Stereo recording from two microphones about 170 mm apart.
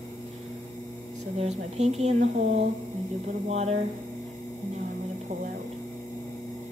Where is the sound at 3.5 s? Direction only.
40° right (ahead or behind).